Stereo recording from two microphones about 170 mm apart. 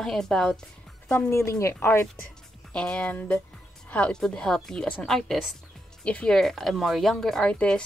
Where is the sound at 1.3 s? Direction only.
15° left (ahead or behind).